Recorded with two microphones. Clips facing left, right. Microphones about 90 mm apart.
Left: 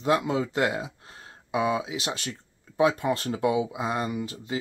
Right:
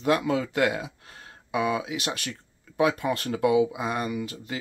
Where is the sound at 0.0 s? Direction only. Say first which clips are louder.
Even; 25° left (ahead or behind).